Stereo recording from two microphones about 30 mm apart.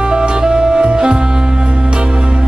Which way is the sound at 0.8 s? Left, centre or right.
Right.